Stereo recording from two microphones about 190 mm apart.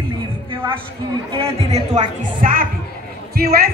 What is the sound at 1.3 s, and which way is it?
A woman's voice, 30° right (ahead or behind).